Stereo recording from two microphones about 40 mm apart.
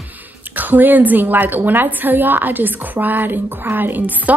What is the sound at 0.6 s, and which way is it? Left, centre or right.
A woman's voice, right.